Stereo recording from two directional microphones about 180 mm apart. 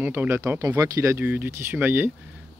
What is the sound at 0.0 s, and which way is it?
Speech, 15° right (ahead or behind).